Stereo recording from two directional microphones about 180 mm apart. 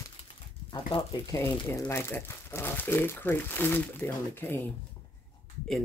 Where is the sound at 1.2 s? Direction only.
20° left (ahead or behind).